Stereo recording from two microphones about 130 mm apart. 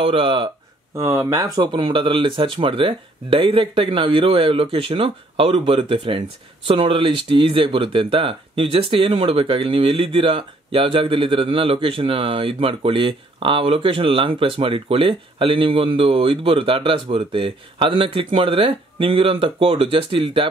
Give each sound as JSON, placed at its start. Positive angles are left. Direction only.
{"t": 0.0, "sound": "speech", "side_deg": -45}
{"t": 0.9, "sound": "speech", "side_deg": -20}
{"t": 1.6, "sound": "speech", "side_deg": -40}